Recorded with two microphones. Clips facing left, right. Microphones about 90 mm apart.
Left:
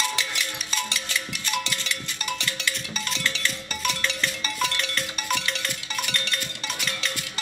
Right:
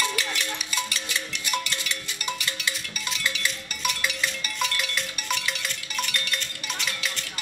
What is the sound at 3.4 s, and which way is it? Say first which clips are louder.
Music: left 1 dB; 10° right (ahead or behind).